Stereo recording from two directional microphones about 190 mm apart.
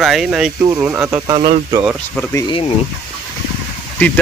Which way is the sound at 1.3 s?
25° right (ahead or behind).